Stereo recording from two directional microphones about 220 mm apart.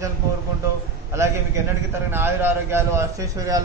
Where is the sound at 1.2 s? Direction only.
15° right (ahead or behind).